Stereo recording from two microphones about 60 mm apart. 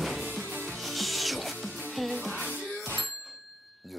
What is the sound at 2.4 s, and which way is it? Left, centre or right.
Music, centre.